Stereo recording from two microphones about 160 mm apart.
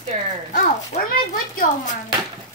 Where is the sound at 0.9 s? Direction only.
45° left (ahead or behind).